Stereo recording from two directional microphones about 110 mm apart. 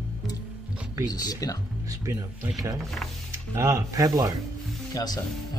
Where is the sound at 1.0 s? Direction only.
35° left (ahead or behind).